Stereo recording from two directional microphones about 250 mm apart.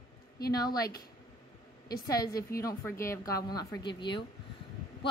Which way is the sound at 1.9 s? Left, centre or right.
Left.